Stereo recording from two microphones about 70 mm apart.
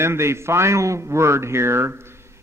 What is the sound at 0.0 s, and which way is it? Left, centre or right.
A man's voice, right.